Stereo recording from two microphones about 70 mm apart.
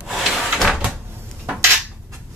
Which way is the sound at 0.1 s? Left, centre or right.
Centre.